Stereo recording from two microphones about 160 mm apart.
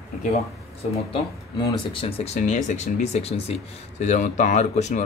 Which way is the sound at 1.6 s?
35° left (ahead or behind).